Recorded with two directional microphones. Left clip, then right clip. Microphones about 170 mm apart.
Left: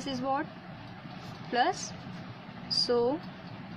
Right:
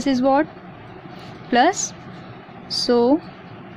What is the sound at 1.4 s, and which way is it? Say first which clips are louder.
A woman's voice: right 11 dB; 50° right (ahead or behind).